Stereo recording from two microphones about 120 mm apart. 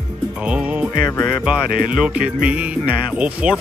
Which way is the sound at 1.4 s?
10° right (ahead or behind).